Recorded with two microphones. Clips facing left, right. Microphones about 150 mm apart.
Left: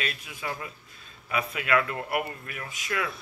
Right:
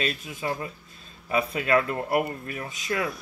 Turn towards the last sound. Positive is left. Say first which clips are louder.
# right 3 dB
turn(degrees=-25)  # may be behind; listen again after turning